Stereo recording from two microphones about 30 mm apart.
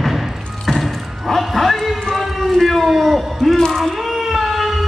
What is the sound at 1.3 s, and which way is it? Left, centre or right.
Dog, centre.